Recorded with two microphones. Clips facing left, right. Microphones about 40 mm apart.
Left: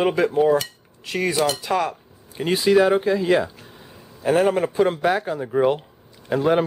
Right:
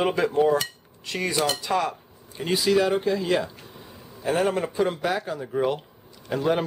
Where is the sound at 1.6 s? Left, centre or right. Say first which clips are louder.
Left 2 dB; centre.